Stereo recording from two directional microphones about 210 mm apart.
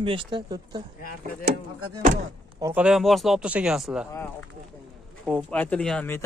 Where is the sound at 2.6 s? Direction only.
5° right (ahead or behind).